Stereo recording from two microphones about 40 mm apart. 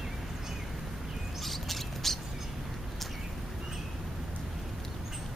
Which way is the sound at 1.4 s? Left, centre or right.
Centre.